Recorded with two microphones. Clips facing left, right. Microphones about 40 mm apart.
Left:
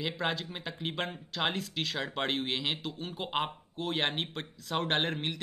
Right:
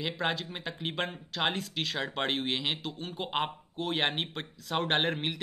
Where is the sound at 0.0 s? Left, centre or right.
Centre.